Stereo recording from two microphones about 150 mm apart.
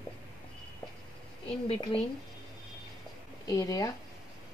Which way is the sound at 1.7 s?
35° left (ahead or behind).